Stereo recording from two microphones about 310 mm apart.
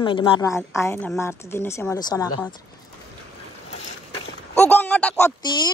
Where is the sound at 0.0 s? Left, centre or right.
Centre.